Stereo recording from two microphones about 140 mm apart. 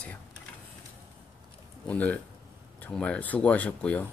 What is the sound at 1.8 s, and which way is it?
Speech, 10° left (ahead or behind).